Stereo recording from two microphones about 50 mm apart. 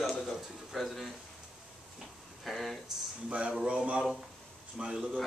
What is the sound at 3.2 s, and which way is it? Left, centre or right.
Speech, right.